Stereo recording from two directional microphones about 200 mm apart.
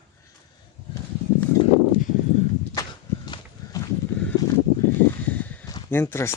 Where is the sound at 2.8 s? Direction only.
20° left (ahead or behind).